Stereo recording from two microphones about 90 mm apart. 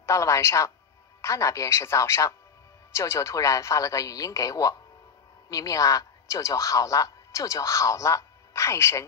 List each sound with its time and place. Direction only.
0.0 s a woman's voice: 35° left (ahead or behind)